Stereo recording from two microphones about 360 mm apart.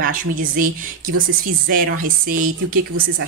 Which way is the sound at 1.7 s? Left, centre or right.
Right.